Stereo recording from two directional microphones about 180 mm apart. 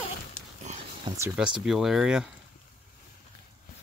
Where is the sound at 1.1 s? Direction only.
25° right (ahead or behind).